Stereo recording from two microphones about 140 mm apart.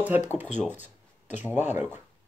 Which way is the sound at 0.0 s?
10° right (ahead or behind).